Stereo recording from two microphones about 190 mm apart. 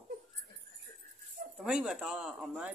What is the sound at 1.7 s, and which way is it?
A man's voice, 5° right (ahead or behind).